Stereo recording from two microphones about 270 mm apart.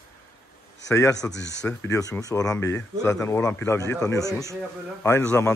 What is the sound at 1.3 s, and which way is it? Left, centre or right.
Speech, left.